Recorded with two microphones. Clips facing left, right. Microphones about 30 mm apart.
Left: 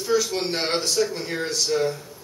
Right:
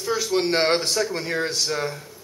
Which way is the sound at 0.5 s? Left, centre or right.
Right.